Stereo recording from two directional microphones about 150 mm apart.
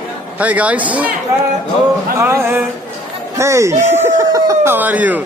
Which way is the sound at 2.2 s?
15° right (ahead or behind).